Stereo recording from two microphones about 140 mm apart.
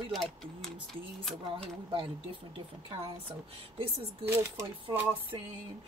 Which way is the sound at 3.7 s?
40° right (ahead or behind).